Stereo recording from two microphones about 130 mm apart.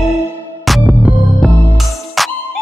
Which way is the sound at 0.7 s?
Centre (ahead or behind).